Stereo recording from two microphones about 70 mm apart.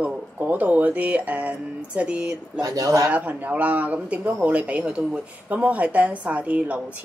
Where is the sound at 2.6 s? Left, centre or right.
Right.